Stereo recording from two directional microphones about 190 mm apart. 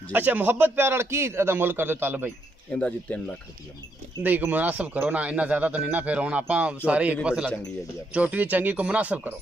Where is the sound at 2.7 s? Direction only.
5° left (ahead or behind).